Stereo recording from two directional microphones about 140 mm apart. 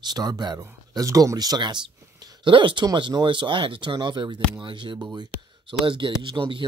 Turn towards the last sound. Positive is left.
turn(degrees=-35)  # may be behind; listen again after turning